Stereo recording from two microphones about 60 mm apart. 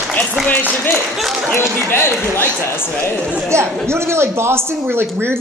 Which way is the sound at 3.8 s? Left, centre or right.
Right.